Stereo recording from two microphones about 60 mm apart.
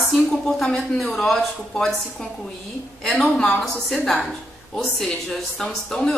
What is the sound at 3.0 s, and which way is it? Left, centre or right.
A woman's voice, centre.